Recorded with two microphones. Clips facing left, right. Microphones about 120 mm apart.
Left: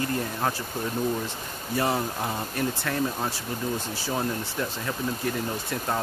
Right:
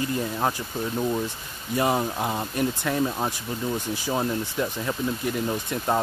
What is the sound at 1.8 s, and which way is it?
Speech, 15° right (ahead or behind).